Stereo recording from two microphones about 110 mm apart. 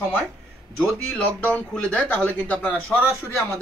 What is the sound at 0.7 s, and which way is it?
A man's voice, 5° left (ahead or behind).